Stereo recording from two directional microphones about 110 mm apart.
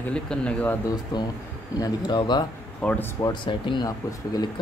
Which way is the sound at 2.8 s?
10° left (ahead or behind).